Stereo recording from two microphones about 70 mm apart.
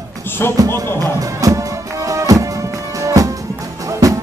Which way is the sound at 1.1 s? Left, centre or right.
Right.